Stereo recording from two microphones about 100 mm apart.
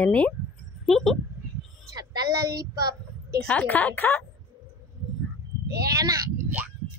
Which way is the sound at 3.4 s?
15° left (ahead or behind).